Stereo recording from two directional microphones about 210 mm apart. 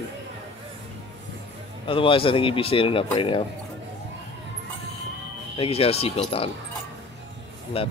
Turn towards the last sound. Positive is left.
turn(degrees=25)  # may be behind; listen again after turning